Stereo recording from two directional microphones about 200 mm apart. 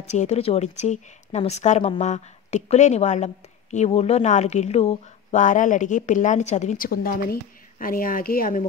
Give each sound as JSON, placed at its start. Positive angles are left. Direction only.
{"t": 0.1, "sound": "speech", "side_deg": 35}